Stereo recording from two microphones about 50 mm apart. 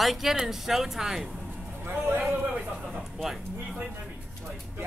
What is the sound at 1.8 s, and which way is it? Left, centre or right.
Speech, right.